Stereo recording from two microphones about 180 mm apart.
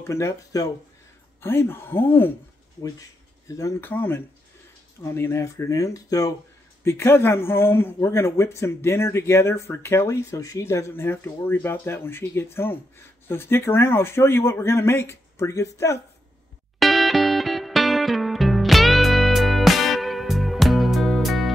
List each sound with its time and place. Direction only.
0.0 s speech: 15° left (ahead or behind)
16.8 s music: centre (ahead or behind)